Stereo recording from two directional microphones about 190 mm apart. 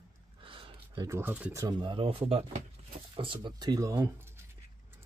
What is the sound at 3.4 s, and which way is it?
Speech, 20° right (ahead or behind).